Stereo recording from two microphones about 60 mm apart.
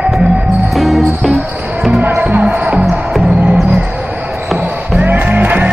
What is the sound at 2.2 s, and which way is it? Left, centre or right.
Music, right.